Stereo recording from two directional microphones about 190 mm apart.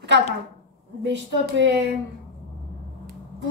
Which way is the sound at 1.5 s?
65° right (ahead or behind).